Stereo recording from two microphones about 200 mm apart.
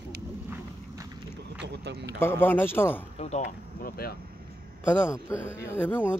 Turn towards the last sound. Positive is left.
turn(degrees=10)  # may be behind; listen again after turning